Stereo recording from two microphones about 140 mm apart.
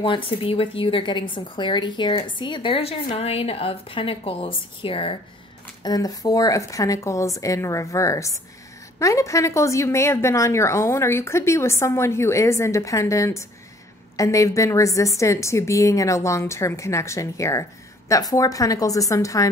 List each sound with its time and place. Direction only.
0.0 s a woman's voice: 40° left (ahead or behind)
5.8 s a woman's voice: 25° left (ahead or behind)